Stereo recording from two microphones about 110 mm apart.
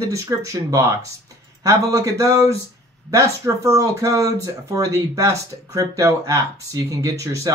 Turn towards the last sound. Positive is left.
turn(degrees=-30)  # may be behind; listen again after turning